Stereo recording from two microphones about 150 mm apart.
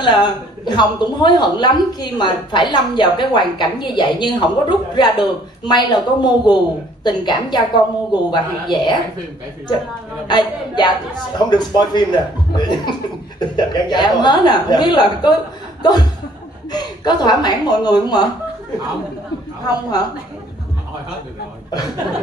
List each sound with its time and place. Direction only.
0.0 s speech: 30° left (ahead or behind)
10.2 s speech: 30° left (ahead or behind)
16.7 s speech: 30° left (ahead or behind)
19.6 s speech: 25° left (ahead or behind)